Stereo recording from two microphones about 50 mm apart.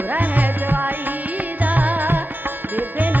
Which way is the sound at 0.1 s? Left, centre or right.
Right.